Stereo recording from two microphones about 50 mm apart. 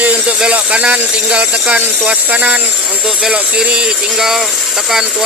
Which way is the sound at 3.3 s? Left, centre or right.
Centre.